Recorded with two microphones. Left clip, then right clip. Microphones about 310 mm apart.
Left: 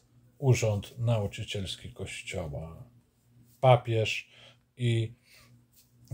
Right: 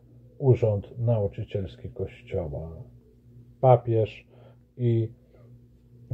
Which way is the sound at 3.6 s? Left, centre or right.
Centre.